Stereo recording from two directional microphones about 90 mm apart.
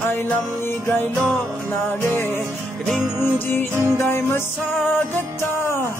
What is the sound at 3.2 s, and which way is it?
Music, 25° left (ahead or behind).